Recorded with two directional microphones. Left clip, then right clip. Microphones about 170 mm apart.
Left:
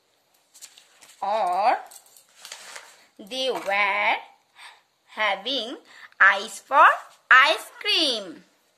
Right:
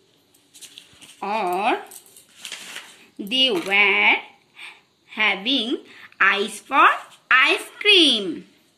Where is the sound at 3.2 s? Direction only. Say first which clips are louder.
Right 7 dB; 50° left (ahead or behind).